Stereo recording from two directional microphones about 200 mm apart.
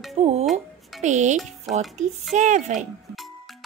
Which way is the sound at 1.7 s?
Centre (ahead or behind).